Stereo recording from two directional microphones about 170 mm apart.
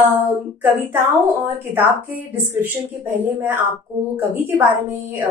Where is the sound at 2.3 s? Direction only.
10° right (ahead or behind).